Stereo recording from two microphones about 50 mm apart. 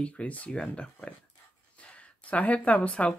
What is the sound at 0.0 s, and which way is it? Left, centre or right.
Speech, left.